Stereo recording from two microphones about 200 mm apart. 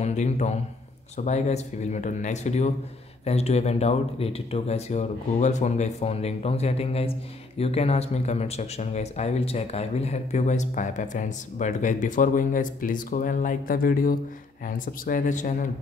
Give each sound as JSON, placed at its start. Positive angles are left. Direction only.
{"t": 0.0, "sound": "speech", "side_deg": 35}